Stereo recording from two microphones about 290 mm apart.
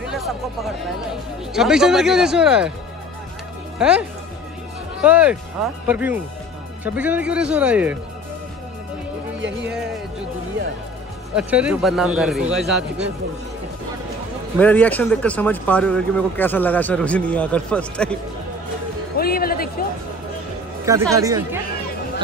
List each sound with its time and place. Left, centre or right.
1.5 s speech: centre
3.7 s speech: centre
5.0 s speech: centre
11.3 s speech: centre
14.6 s speech: centre
19.1 s music: left
20.8 s speech: centre